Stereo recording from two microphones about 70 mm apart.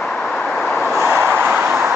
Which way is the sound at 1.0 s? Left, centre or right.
Right.